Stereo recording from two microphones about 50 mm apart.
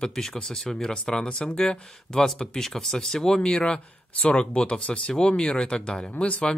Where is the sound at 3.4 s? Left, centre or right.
Left.